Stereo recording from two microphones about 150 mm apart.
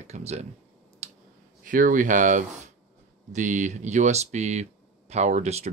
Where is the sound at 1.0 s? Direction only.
45° right (ahead or behind).